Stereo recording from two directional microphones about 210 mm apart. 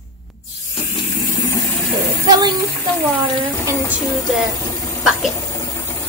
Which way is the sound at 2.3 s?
20° right (ahead or behind).